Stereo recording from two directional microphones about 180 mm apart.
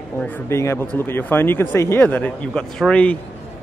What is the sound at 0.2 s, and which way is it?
Speech, 15° left (ahead or behind).